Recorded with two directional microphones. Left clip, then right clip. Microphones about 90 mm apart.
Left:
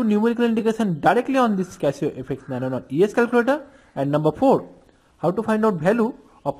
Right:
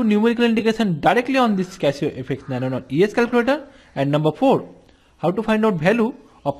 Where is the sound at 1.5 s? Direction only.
30° left (ahead or behind).